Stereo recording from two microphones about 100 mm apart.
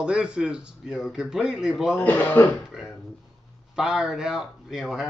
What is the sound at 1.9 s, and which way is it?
Speech, 20° left (ahead or behind).